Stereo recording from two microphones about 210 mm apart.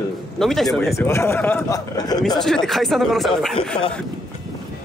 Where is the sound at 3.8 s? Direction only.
25° left (ahead or behind).